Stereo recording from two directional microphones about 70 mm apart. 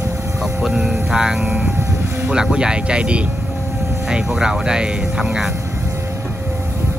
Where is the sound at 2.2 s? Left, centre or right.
Centre.